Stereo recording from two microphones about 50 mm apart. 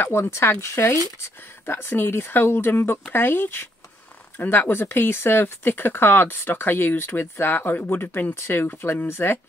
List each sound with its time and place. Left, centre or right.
0.0 s speech: left
1.7 s speech: left